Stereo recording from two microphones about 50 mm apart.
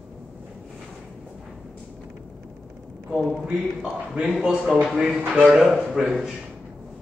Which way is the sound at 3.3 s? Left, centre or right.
Centre.